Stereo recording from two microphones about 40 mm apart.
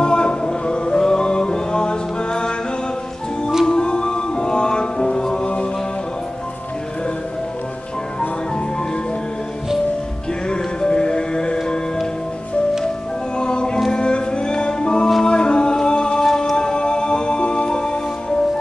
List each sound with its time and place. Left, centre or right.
0.0 s music: left
3.6 s music: left
10.5 s music: left
13.4 s music: left
16.5 s music: left